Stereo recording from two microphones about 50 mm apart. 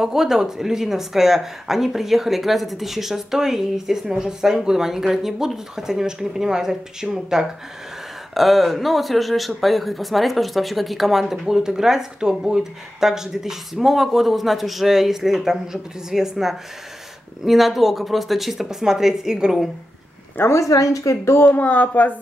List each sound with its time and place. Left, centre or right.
0.0 s speech: centre
20.5 s speech: left
21.4 s speech: left